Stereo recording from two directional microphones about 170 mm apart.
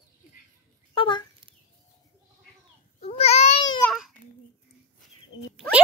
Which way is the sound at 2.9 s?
35° left (ahead or behind).